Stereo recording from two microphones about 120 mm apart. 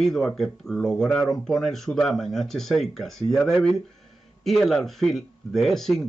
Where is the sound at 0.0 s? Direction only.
5° left (ahead or behind).